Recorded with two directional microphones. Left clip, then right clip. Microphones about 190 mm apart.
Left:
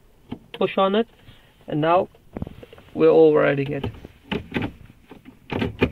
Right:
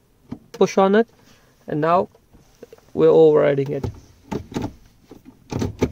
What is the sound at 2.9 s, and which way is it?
Speech, 65° right (ahead or behind).